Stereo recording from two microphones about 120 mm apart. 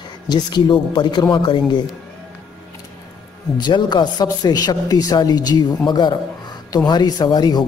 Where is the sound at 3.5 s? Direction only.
35° left (ahead or behind).